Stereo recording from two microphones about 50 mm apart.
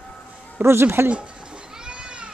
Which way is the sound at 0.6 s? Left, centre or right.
Right.